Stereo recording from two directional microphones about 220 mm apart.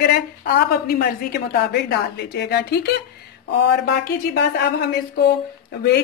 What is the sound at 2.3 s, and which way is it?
Speech, 50° left (ahead or behind).